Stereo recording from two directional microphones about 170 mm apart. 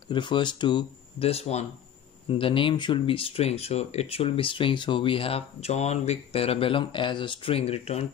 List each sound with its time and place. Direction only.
0.1 s speech: 25° left (ahead or behind)